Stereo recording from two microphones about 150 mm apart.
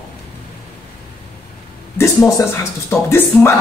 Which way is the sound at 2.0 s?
20° left (ahead or behind).